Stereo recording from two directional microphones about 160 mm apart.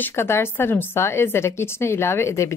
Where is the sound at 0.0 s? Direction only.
15° left (ahead or behind).